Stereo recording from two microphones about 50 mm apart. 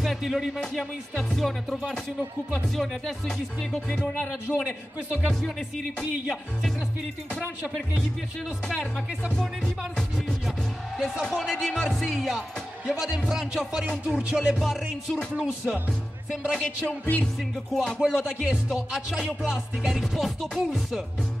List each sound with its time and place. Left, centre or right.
0.0 s music: centre
4.0 s music: centre
11.0 s music: centre
14.5 s music: centre
15.3 s music: right
16.3 s music: centre
18.0 s music: centre